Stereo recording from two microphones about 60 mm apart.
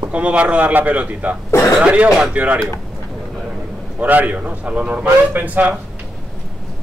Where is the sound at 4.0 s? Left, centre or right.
Right.